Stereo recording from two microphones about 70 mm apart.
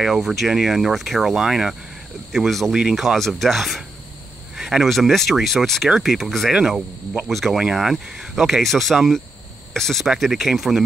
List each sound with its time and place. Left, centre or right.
0.0 s speech: centre